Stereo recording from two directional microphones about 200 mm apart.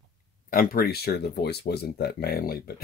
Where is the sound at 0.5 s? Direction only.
45° left (ahead or behind).